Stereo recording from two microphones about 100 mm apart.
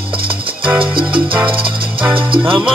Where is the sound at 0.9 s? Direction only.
55° right (ahead or behind).